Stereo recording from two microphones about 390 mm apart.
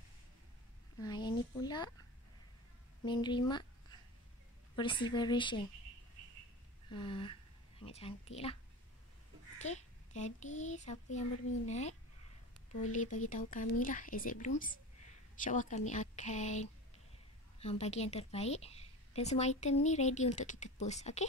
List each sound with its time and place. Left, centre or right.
1.0 s speech: centre
3.1 s a woman's voice: centre
4.7 s a woman's voice: centre
6.9 s a woman's voice: centre
9.6 s a woman's voice: centre